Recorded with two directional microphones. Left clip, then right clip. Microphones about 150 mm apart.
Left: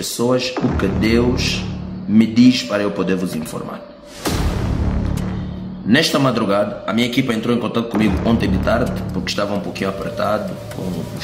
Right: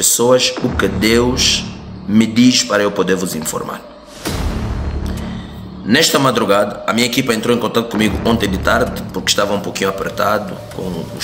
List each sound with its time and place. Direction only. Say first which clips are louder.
0.2 s a man's voice: right 4 dB; 15° left (ahead or behind)
5.9 s a man's voice: right 3 dB; 15° left (ahead or behind)